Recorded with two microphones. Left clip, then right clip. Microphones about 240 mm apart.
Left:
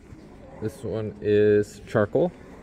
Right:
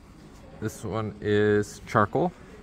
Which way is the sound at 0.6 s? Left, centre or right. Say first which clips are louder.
Left 2 dB; centre.